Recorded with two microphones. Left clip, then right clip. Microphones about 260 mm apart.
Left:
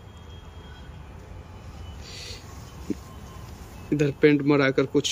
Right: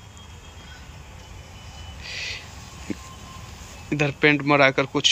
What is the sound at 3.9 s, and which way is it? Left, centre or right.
Speech, centre.